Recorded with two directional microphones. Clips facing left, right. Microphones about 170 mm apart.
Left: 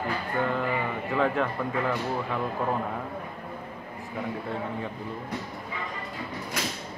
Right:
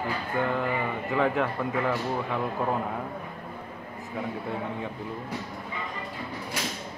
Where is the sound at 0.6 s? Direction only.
10° right (ahead or behind).